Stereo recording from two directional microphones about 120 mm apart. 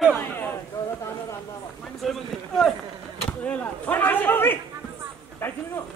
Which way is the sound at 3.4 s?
15° left (ahead or behind).